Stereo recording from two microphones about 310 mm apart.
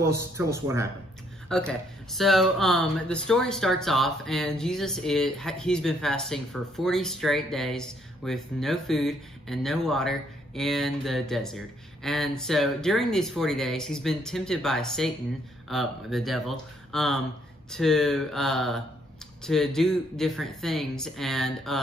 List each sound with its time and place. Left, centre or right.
0.0 s a man's voice: centre
1.5 s speech: centre